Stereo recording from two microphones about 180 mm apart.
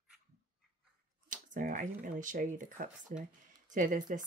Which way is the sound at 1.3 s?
45° right (ahead or behind).